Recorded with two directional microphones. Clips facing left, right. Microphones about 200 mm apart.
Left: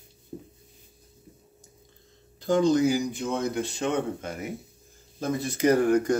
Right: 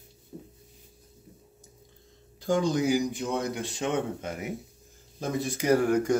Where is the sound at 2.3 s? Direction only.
10° right (ahead or behind).